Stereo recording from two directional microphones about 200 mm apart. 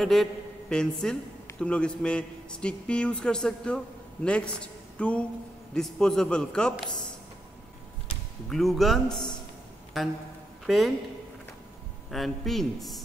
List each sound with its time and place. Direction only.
0.0 s a man's voice: centre (ahead or behind)
8.5 s a man's voice: centre (ahead or behind)
12.1 s a man's voice: centre (ahead or behind)